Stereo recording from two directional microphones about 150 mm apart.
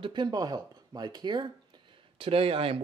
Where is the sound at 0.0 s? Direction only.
30° right (ahead or behind).